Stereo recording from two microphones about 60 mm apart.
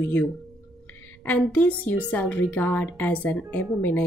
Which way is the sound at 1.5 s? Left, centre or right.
Left.